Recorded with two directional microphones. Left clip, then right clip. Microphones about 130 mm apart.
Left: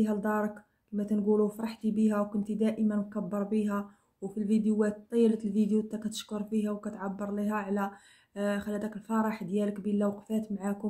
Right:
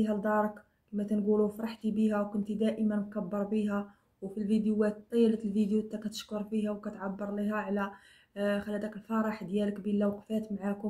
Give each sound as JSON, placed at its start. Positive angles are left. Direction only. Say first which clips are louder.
{"t": 0.0, "sound": "speech", "louder": "right 1 dB", "side_deg": 40}